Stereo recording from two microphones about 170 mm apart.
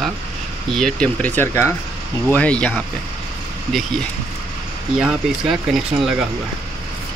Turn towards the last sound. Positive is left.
turn(degrees=0)  # may be behind; listen again after turning